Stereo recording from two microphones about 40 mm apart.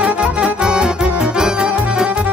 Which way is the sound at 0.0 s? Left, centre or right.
Right.